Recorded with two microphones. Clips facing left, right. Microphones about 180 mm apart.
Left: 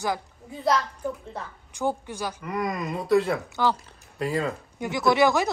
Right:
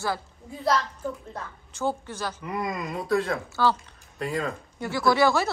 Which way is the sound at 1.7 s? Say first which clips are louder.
Left 1 dB; 15° left (ahead or behind).